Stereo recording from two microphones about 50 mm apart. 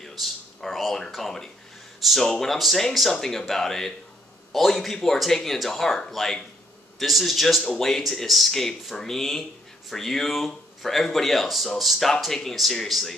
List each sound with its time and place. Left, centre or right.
0.0 s speech: centre